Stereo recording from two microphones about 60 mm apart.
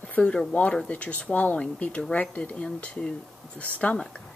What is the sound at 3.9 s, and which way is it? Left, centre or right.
Speech, centre.